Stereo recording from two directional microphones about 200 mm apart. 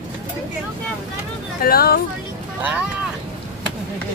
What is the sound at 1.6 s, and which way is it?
Speech, 50° left (ahead or behind).